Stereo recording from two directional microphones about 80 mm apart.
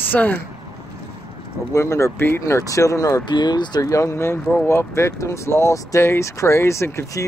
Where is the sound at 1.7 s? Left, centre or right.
Left.